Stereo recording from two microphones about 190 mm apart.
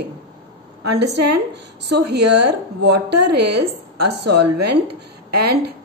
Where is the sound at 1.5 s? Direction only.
65° right (ahead or behind).